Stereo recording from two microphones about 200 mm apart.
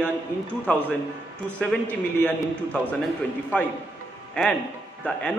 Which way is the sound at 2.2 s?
5° left (ahead or behind).